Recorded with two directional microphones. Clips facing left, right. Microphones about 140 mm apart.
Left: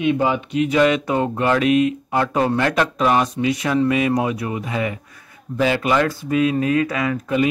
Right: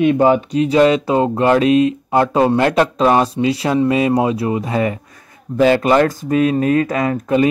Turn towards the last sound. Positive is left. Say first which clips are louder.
# right 4 dB
turn(degrees=-40)  # may be behind; listen again after turning